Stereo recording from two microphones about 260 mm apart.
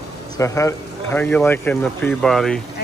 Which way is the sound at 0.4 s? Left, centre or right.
Centre.